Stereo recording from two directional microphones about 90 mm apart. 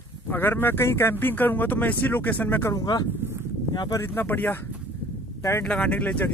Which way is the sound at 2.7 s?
50° left (ahead or behind).